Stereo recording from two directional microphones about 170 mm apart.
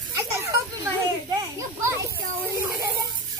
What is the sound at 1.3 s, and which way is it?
Children playing, 20° right (ahead or behind).